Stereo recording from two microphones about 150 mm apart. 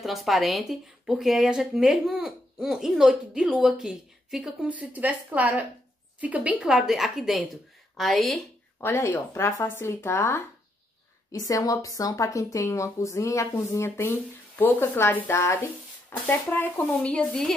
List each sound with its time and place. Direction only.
0.0 s speech: centre (ahead or behind)
8.8 s a woman's voice: 15° left (ahead or behind)